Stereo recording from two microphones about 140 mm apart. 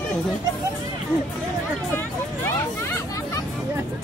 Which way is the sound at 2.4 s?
15° left (ahead or behind).